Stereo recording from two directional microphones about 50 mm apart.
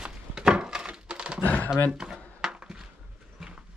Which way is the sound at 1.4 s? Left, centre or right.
Left.